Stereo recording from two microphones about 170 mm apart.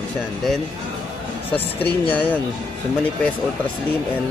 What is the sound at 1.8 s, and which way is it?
Speech, 10° left (ahead or behind).